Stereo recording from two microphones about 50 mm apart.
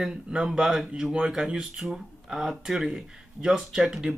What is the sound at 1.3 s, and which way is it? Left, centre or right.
Speech, centre.